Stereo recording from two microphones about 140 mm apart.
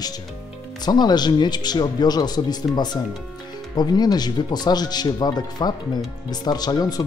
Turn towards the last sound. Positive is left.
turn(degrees=30)  # may be behind; listen again after turning